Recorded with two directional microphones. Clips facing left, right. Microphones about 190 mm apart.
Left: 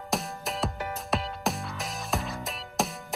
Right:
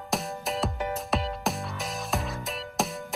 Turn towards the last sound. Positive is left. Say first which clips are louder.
# right 1 dB
turn(degrees=0)  # may be behind; listen again after turning